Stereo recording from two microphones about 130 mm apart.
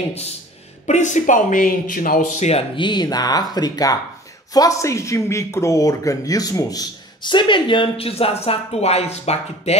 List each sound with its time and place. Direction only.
0.8 s speech: 65° left (ahead or behind)
2.7 s speech: 35° left (ahead or behind); by 9.8 s 55° left (ahead or behind)